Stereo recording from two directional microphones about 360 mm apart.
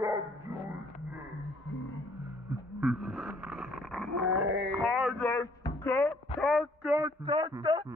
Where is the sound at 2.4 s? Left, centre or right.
Centre.